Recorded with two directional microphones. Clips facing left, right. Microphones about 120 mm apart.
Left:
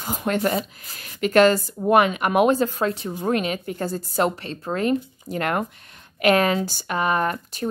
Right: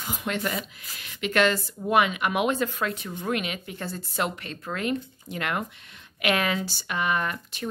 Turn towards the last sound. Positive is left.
turn(degrees=40)  # may be behind; listen again after turning